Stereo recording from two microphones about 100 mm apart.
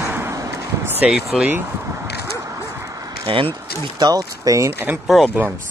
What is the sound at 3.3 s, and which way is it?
Speech, 60° right (ahead or behind).